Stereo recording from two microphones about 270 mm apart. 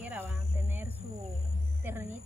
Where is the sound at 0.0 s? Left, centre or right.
Centre.